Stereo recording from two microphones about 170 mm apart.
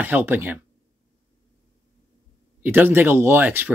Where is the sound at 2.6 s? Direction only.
10° right (ahead or behind).